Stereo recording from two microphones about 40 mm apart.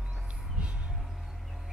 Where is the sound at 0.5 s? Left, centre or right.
Right.